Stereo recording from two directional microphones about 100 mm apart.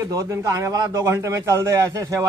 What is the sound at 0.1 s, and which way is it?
A man's voice, 35° right (ahead or behind).